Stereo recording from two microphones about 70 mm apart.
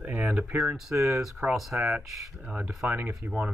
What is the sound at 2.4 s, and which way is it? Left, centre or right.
Speech, centre.